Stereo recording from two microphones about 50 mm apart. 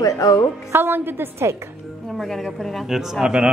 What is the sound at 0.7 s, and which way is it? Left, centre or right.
Speech, right.